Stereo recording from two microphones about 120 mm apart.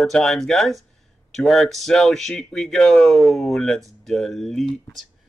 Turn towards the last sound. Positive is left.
turn(degrees=0)  # may be behind; listen again after turning